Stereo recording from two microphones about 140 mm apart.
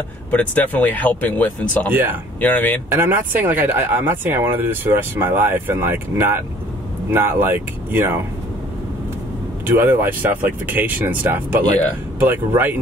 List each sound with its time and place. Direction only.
0.3 s speech: 10° left (ahead or behind)
1.9 s speech: 15° right (ahead or behind)
2.4 s speech: 10° left (ahead or behind)
2.9 s speech: 15° right (ahead or behind)
9.7 s speech: 15° right (ahead or behind)